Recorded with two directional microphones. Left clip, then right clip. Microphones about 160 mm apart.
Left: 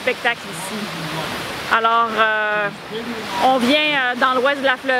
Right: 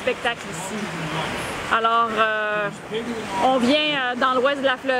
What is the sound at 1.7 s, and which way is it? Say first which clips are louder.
Speech: left 3 dB; 15° left (ahead or behind).